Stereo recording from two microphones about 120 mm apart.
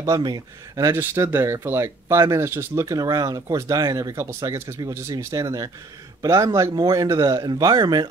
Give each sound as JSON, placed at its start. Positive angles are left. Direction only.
{"t": 0.0, "sound": "speech", "side_deg": -30}